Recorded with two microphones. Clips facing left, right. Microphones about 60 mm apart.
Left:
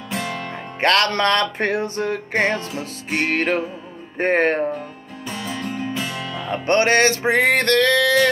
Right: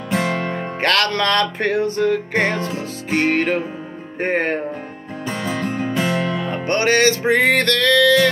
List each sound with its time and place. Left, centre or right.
0.1 s music: right
0.7 s music: left
2.5 s music: right
4.2 s music: left
5.2 s music: right
6.7 s music: left